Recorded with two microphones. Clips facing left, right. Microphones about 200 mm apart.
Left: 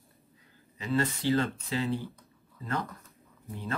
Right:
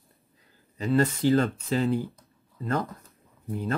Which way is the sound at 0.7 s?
40° right (ahead or behind).